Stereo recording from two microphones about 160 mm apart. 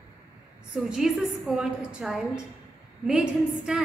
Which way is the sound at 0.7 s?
5° right (ahead or behind).